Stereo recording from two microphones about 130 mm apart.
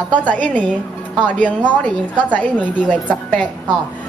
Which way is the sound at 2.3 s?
10° left (ahead or behind).